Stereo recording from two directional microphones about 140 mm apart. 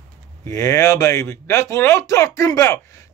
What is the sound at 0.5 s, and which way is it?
Speech, 20° left (ahead or behind).